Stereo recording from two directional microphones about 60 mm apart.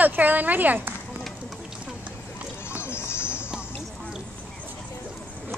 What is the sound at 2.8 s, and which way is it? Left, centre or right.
Music, left.